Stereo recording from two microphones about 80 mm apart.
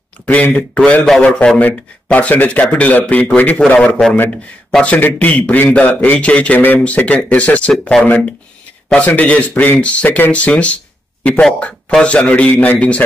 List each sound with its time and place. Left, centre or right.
0.3 s a man's voice: centre
11.9 s a man's voice: centre